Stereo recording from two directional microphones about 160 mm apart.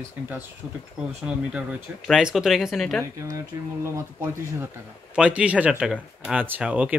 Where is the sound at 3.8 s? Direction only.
15° right (ahead or behind).